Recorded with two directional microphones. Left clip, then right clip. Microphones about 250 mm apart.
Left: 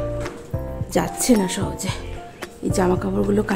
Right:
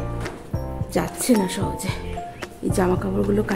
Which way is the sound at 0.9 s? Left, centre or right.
Centre.